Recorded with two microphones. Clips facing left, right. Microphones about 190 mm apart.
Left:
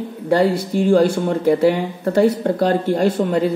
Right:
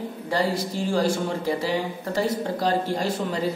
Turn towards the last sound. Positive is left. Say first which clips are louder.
# left 9 dB
turn(degrees=55)  # may be behind; listen again after turning